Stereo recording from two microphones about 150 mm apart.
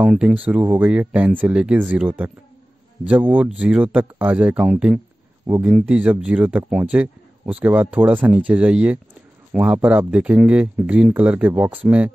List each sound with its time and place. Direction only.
0.0 s speech: 5° right (ahead or behind)